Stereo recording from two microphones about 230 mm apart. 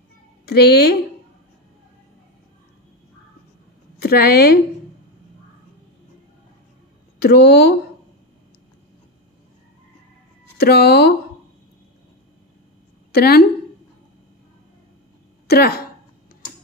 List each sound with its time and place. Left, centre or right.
0.5 s speech: left
4.0 s speech: left
7.2 s speech: left
10.6 s speech: left
13.1 s speech: left
15.4 s speech: left